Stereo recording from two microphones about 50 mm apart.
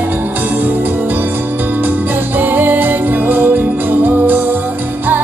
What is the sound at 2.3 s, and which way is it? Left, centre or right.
Music, right.